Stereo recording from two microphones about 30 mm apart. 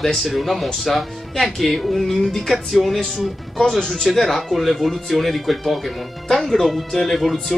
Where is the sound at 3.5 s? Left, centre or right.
Centre.